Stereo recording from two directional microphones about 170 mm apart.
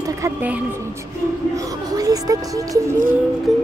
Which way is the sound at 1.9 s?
20° right (ahead or behind).